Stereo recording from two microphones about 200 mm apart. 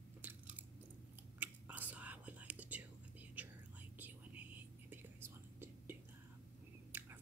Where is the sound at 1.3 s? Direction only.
10° right (ahead or behind).